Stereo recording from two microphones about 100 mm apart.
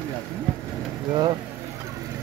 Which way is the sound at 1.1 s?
45° right (ahead or behind).